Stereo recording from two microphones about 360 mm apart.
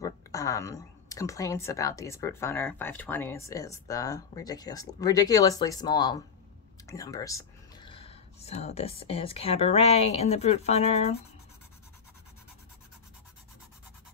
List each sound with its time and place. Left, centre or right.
0.0 s speech: centre